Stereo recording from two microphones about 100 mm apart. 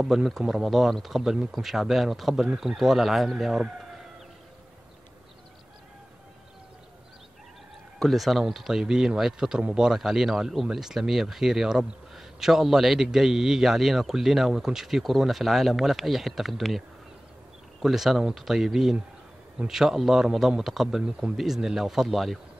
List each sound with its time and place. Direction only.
0.0 s speech: centre (ahead or behind)
8.0 s speech: centre (ahead or behind)
17.8 s speech: 5° right (ahead or behind)